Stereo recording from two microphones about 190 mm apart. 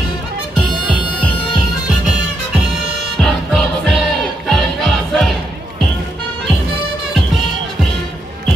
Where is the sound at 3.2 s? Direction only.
Centre (ahead or behind).